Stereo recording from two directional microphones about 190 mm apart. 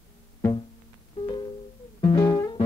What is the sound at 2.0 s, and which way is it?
Music, 15° left (ahead or behind).